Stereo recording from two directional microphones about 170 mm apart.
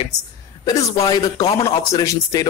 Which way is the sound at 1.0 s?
20° left (ahead or behind).